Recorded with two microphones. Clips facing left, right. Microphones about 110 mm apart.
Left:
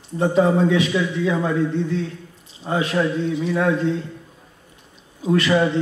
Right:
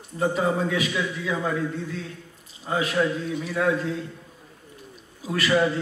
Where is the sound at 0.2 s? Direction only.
30° left (ahead or behind).